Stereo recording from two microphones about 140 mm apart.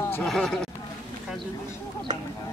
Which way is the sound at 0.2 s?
Centre (ahead or behind).